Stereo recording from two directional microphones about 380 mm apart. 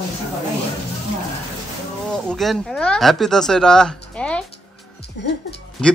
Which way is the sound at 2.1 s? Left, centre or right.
Centre.